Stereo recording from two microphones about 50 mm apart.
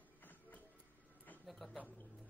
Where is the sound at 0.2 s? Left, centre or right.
Left.